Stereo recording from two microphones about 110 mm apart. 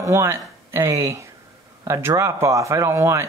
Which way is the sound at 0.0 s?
25° right (ahead or behind).